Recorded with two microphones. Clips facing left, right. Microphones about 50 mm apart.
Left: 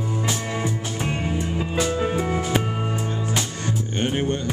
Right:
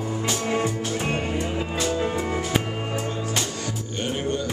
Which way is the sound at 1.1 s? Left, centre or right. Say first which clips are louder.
Even; right.